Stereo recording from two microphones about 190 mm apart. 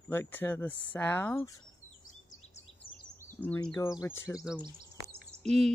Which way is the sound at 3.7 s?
20° left (ahead or behind).